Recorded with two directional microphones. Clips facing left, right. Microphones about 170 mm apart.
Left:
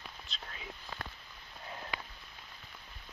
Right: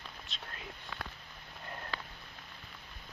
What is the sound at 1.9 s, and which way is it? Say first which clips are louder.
Rain on surface: left 1 dB; 15° left (ahead or behind).